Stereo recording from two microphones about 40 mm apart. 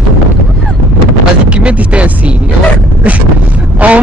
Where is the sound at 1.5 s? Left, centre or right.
Right.